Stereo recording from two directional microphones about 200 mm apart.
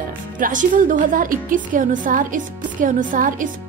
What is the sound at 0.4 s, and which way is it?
Speech, 40° right (ahead or behind).